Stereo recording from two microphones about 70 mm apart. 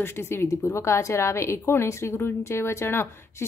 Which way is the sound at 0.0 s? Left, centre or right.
Left.